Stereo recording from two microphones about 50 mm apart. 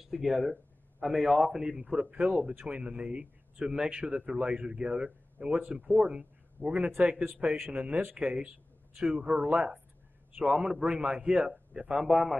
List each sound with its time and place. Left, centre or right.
0.0 s a man's voice: centre; by 8.5 s right
8.9 s speech: centre
9.2 s speech: right
10.4 s a man's voice: centre